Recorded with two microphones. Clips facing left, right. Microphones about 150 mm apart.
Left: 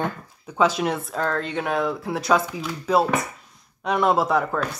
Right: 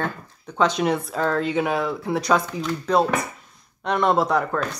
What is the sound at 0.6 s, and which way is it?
Speech, 5° left (ahead or behind).